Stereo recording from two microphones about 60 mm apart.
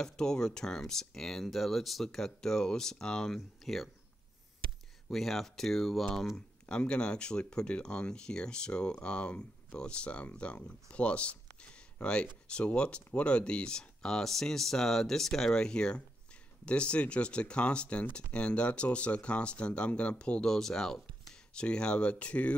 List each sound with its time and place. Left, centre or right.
0.0 s speech: centre
5.1 s speech: centre
6.6 s speech: centre